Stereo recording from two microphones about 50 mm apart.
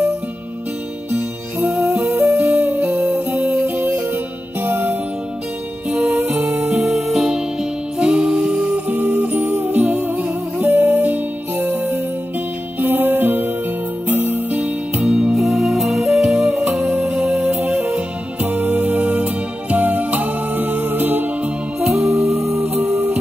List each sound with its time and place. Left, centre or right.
1.1 s music: right
1.8 s music: right
5.9 s music: centre
8.0 s music: centre
8.7 s music: right
15.0 s music: centre
15.3 s music: centre
18.4 s music: right
21.7 s music: centre